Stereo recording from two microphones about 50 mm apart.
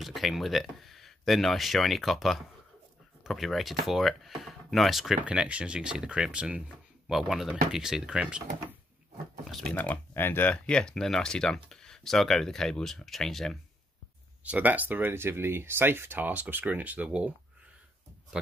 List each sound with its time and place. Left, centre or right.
0.0 s speech: centre
5.3 s speech: centre
7.3 s speech: centre
9.8 s speech: left
10.5 s speech: centre
14.4 s speech: right